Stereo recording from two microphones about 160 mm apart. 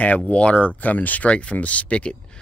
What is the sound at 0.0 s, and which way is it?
Speech, 10° left (ahead or behind).